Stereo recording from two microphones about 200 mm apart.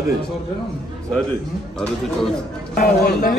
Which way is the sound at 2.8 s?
45° left (ahead or behind).